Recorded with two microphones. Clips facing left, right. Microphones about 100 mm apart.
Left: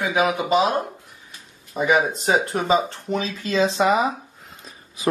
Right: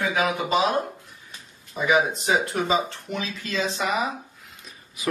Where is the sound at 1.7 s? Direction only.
40° left (ahead or behind).